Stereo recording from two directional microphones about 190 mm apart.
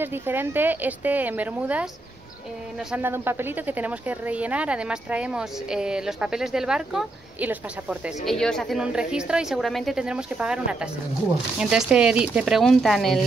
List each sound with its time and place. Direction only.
0.0 s speech: 10° right (ahead or behind)
2.9 s a woman's voice: 10° right (ahead or behind)
8.4 s a woman's voice: 5° left (ahead or behind)